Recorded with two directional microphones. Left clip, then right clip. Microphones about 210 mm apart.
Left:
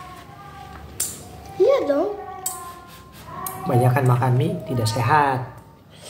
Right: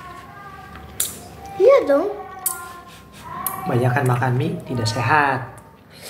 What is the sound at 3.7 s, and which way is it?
Speech, 20° left (ahead or behind).